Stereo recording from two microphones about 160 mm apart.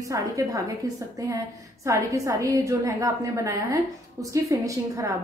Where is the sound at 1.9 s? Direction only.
20° right (ahead or behind).